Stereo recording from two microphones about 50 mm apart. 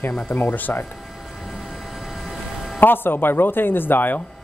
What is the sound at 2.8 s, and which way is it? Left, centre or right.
Speech, left.